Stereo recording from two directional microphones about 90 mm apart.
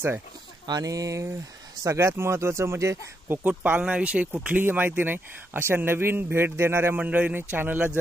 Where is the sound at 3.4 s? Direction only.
20° right (ahead or behind).